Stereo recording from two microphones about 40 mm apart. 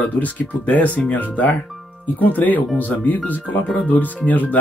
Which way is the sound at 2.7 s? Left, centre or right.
Left.